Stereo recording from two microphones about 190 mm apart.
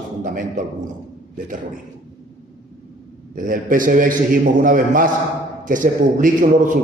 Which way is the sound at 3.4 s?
45° right (ahead or behind).